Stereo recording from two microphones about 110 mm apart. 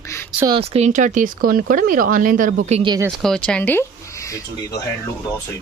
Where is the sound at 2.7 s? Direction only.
85° right.